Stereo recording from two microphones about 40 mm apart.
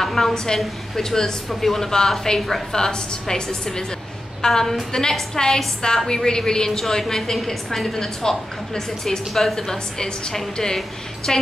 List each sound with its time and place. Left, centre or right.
0.0 s a woman's voice: centre